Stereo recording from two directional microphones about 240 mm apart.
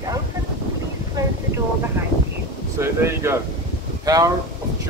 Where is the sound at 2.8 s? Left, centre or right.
Centre.